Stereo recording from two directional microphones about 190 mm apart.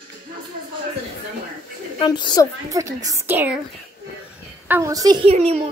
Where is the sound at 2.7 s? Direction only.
15° right (ahead or behind).